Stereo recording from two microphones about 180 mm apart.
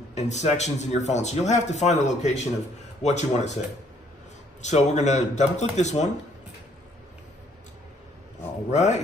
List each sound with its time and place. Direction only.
0.1 s speech: 40° left (ahead or behind)
4.6 s speech: 40° left (ahead or behind)
8.6 s speech: 40° left (ahead or behind)